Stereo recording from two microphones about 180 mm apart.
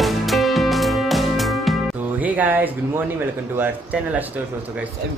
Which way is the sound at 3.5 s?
10° right (ahead or behind).